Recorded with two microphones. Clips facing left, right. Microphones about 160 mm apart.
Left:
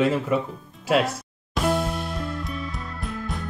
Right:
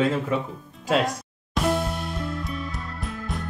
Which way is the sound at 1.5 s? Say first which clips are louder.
Left 1 dB; centre (ahead or behind).